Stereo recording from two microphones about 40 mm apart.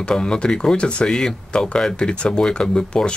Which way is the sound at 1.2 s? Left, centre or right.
Centre.